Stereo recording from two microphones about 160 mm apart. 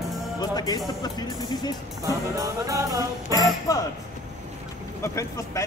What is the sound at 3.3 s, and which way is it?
Music, 20° left (ahead or behind).